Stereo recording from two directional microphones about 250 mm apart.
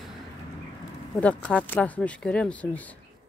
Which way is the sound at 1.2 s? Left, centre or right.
Centre.